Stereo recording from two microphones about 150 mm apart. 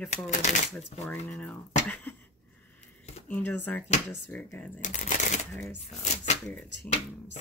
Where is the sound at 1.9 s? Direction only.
10° left (ahead or behind).